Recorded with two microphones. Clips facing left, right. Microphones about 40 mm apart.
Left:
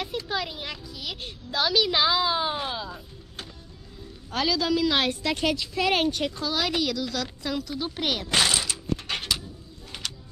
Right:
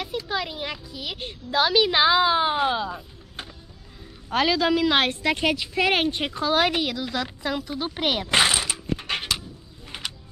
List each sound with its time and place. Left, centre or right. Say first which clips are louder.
0.0 s a child's voice: right 2 dB; centre